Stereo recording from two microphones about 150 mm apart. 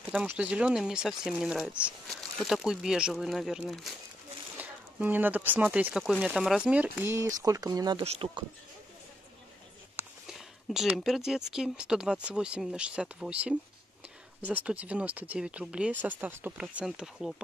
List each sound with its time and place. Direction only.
0.1 s speech: 10° right (ahead or behind)
4.6 s speech: 10° right (ahead or behind); by 8.5 s 35° right (ahead or behind)
10.7 s speech: 5° right (ahead or behind)